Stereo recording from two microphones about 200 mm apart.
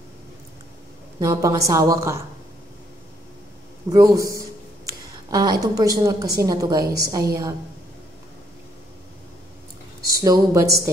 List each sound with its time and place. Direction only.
1.2 s a woman's voice: 15° right (ahead or behind)
3.9 s a woman's voice: 15° right (ahead or behind)
10.0 s a woman's voice: 15° right (ahead or behind)